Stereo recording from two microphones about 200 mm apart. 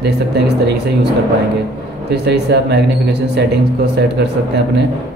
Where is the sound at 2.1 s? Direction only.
55° right (ahead or behind).